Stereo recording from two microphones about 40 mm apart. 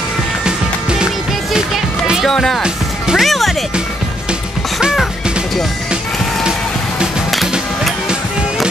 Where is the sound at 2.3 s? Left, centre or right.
Centre.